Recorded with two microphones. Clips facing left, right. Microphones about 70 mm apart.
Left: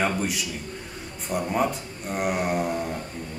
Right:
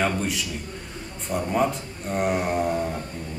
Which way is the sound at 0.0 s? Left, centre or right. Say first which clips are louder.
Right 1 dB; centre.